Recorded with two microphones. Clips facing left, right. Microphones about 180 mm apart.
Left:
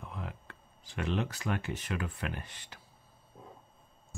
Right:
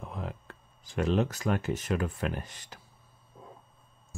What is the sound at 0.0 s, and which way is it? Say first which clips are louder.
Speech: right 4 dB; 40° right (ahead or behind).